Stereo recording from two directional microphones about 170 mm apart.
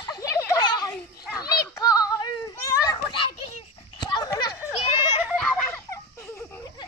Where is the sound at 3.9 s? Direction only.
25° left (ahead or behind).